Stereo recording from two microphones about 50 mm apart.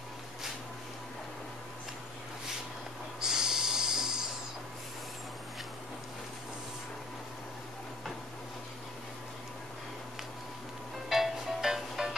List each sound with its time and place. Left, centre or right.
3.2 s snort: centre
11.1 s music: centre